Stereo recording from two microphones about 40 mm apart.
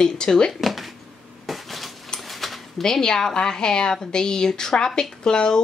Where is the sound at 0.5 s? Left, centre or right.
Centre.